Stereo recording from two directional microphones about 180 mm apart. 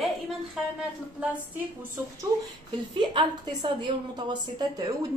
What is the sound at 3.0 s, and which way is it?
A woman's voice, 25° right (ahead or behind).